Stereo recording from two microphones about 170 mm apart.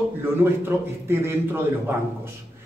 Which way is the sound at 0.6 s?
15° right (ahead or behind).